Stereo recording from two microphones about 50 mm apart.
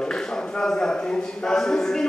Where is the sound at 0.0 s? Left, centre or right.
Centre.